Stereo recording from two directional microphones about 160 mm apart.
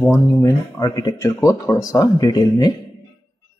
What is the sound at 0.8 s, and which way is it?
Speech, 25° left (ahead or behind).